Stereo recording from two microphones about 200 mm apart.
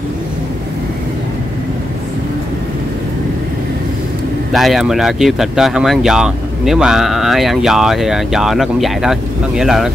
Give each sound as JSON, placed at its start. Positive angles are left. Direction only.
{"t": 4.5, "sound": "speech", "side_deg": 0}